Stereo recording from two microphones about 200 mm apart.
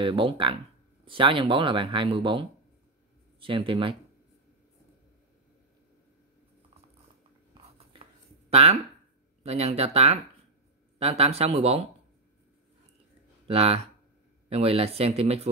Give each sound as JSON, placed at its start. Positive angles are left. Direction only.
{"t": 0.0, "sound": "speech", "side_deg": -25}
{"t": 7.5, "sound": "writing", "side_deg": -25}
{"t": 8.5, "sound": "speech", "side_deg": -30}
{"t": 13.5, "sound": "speech", "side_deg": -30}